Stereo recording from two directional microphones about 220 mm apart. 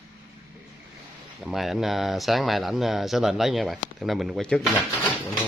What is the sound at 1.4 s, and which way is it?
Speech, centre (ahead or behind).